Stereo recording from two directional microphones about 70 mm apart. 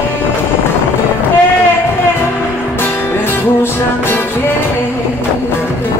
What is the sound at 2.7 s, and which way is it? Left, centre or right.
Music, left.